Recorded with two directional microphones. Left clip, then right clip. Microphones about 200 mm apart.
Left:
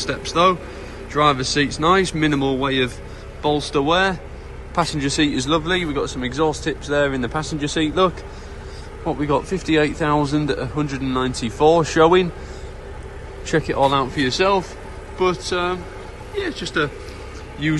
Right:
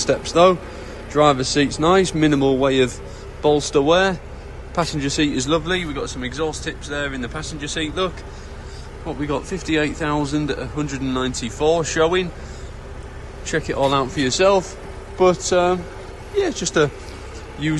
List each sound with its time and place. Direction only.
0.0 s a man's voice: 20° right (ahead or behind); by 12.3 s centre (ahead or behind)
13.5 s a man's voice: centre (ahead or behind); by 16.9 s 25° right (ahead or behind)
17.6 s speech: 15° right (ahead or behind)